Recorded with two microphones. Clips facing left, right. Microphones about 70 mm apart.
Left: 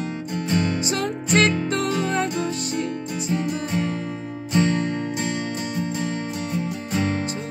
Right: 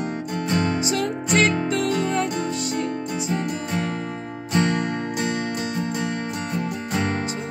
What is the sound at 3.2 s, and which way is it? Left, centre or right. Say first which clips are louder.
Music: left 4 dB; right.